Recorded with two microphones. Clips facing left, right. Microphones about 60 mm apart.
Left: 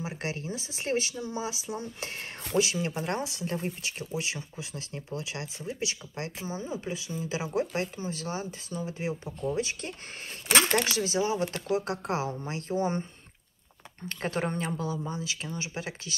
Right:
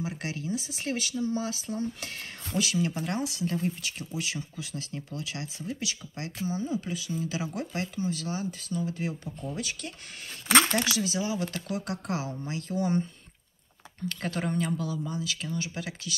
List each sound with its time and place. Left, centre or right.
0.0 s speech: left
2.0 s speech: left
14.0 s speech: left